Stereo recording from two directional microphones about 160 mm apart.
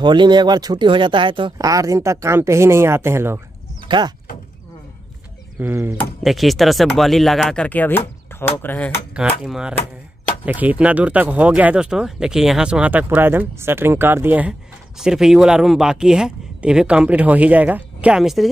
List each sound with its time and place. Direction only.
0.0 s speech: 30° right (ahead or behind)
3.9 s speech: 30° right (ahead or behind)
5.6 s speech: 15° right (ahead or behind)
6.2 s speech: centre (ahead or behind)
9.4 s speech: 5° right (ahead or behind)